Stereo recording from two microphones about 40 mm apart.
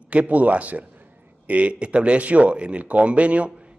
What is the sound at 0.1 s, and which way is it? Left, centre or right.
A man's voice, right.